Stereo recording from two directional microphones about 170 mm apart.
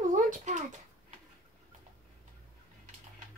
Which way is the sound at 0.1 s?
50° right (ahead or behind).